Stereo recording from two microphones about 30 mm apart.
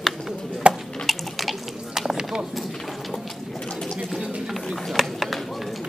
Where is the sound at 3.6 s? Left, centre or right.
Left.